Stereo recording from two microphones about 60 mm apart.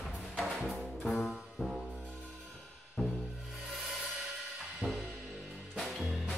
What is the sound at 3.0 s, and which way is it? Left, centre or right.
Music, centre.